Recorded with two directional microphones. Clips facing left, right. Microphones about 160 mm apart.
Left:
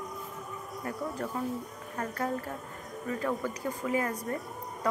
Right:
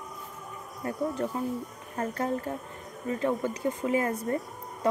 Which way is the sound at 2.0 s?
30° right (ahead or behind).